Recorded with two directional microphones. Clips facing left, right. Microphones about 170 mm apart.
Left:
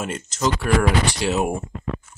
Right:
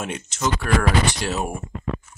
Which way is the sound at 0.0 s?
Centre (ahead or behind).